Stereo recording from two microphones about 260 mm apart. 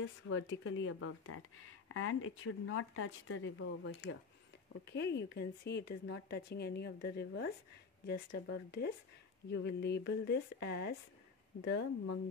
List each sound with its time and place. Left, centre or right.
0.0 s a woman's voice: left